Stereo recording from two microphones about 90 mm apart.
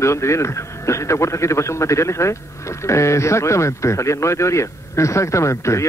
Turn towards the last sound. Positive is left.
turn(degrees=35)  # may be behind; listen again after turning